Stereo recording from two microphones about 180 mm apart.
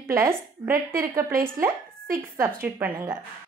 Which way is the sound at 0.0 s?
15° right (ahead or behind).